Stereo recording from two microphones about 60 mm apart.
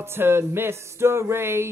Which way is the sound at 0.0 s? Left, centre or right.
Right.